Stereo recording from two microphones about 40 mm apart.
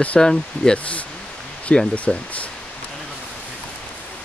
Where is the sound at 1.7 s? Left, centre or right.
Left.